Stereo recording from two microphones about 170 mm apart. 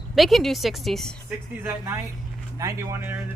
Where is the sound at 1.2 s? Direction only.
10° right (ahead or behind).